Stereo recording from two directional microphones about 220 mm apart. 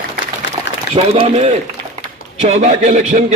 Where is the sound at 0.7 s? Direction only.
50° left (ahead or behind).